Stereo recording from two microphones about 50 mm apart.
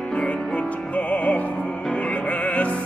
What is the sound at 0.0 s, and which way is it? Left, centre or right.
Music, left.